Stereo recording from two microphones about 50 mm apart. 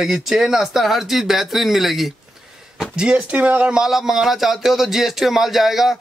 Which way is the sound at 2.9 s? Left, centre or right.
Right.